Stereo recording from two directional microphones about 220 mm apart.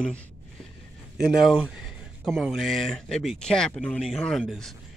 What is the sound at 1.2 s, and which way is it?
Speech, 5° right (ahead or behind).